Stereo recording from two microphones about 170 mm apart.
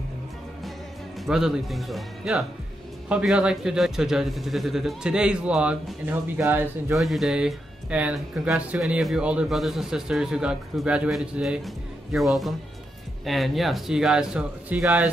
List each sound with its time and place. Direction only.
1.2 s speech: centre (ahead or behind)
7.0 s speech: centre (ahead or behind)